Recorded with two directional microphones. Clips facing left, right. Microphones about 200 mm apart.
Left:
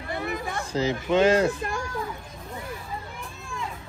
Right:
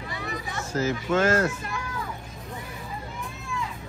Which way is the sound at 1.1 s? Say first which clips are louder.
Left 3 dB; 20° left (ahead or behind).